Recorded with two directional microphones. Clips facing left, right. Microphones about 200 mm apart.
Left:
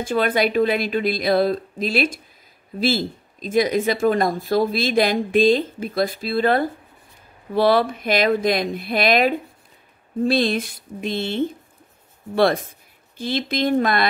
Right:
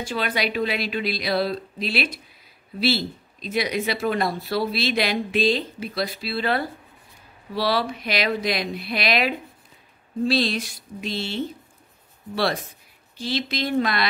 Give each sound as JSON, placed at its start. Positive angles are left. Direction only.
{"t": 0.0, "sound": "speech", "side_deg": 50}